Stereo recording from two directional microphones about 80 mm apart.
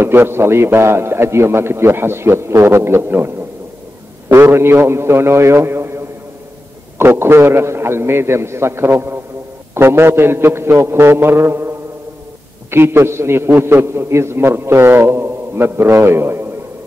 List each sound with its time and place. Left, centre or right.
0.0 s a man's voice: right
4.3 s a man's voice: right
12.7 s a man's voice: right